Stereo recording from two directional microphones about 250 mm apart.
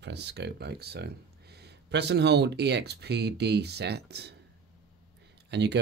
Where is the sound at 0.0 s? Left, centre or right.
Right.